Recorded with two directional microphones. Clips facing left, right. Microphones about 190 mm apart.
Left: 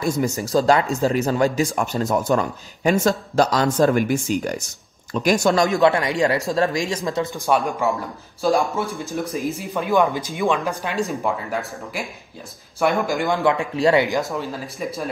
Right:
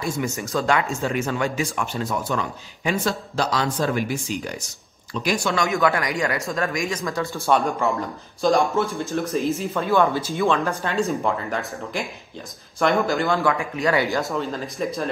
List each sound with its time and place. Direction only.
0.0 s speech: 40° left (ahead or behind)
14.2 s speech: centre (ahead or behind)